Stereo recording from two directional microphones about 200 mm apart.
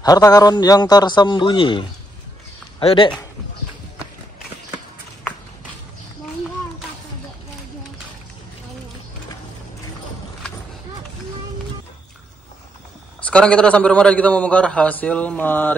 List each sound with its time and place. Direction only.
0.0 s a man's voice: 20° left (ahead or behind)
13.3 s a man's voice: 5° left (ahead or behind)